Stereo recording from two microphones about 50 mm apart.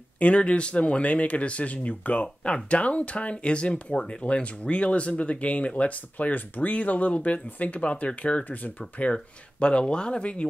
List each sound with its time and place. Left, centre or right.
0.2 s speech: left